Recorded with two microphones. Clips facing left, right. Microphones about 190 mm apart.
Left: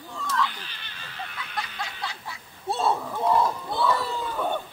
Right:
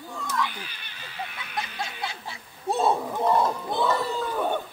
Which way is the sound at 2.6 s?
15° right (ahead or behind).